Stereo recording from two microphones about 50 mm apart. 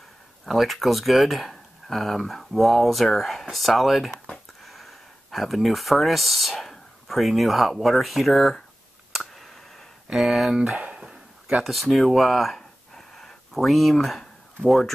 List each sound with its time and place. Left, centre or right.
0.5 s speech: centre
9.1 s clicking: centre
10.1 s speech: centre
10.8 s a sound: right
11.1 s a sound: centre
11.6 s speech: centre